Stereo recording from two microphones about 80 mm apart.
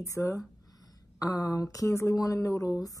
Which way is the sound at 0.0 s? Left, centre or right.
Left.